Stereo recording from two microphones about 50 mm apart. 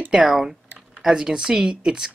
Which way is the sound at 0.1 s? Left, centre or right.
Centre.